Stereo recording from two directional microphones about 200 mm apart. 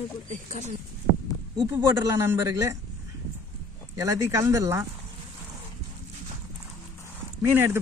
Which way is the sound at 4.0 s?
15° right (ahead or behind).